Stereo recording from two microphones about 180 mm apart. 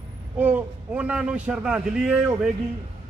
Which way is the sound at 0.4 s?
10° right (ahead or behind).